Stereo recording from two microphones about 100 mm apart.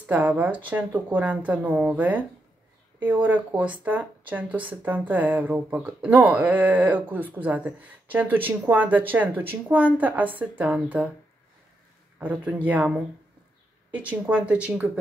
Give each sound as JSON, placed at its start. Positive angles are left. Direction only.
{"t": 0.0, "sound": "speech", "side_deg": -15}
{"t": 12.2, "sound": "speech", "side_deg": -15}